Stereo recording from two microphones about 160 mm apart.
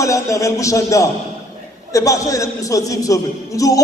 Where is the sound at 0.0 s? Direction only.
20° left (ahead or behind).